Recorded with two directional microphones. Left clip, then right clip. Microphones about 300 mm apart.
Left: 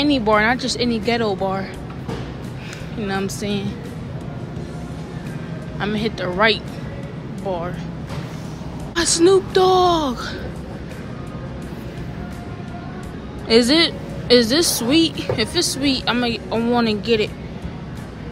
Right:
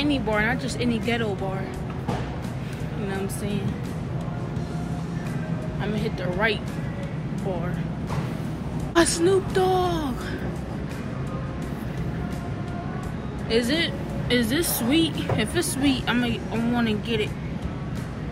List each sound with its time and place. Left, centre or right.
0.0 s a woman's voice: centre
3.1 s speech: centre
5.8 s speech: centre
9.1 s a woman's voice: centre
13.5 s a woman's voice: centre